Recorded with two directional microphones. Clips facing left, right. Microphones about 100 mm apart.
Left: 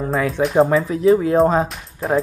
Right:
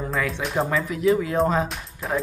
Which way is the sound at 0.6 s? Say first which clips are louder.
Left 8 dB; 30° left (ahead or behind).